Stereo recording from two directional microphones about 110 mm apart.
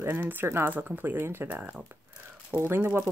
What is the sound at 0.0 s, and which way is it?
Speech, 20° right (ahead or behind).